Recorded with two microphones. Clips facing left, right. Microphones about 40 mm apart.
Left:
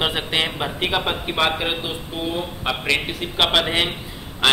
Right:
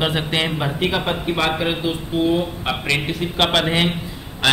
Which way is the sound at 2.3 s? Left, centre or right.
Centre.